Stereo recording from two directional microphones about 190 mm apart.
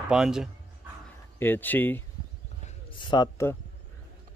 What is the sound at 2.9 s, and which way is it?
Speech, 25° left (ahead or behind).